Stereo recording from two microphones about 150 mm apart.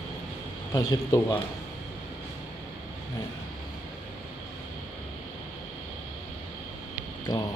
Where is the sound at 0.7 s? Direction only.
20° left (ahead or behind).